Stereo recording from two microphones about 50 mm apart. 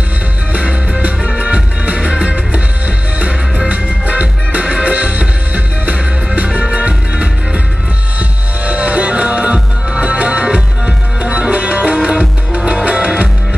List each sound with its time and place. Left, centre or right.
0.5 s music: right